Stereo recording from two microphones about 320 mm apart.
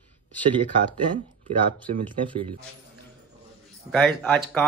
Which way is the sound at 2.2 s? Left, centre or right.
Centre.